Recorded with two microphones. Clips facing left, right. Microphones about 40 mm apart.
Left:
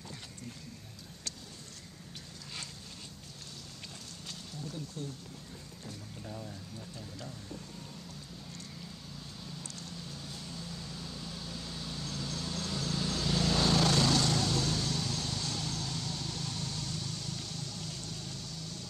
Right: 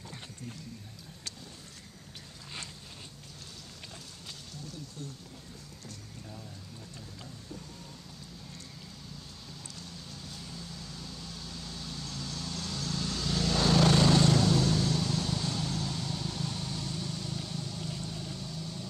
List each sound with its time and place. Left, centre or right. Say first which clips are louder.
9.8 s vehicle: left 1 dB; centre
13.8 s vehicle: right 4 dB; centre
14.3 s vehicle: right 5 dB; centre